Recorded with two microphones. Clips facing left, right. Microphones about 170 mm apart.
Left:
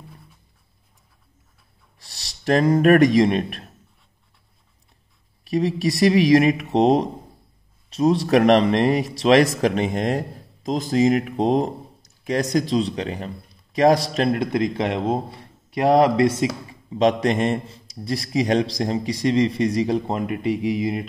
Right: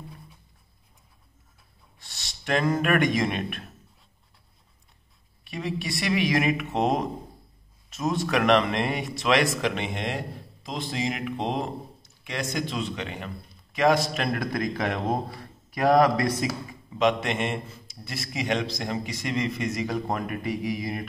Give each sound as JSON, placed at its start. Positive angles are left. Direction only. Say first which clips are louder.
{"t": 2.0, "sound": "a man's voice", "louder": "left 1 dB", "side_deg": 35}
{"t": 5.4, "sound": "speech", "louder": "left 10 dB", "side_deg": 40}